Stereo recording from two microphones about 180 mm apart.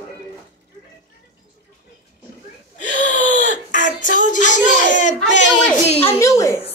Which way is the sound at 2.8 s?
45° left (ahead or behind).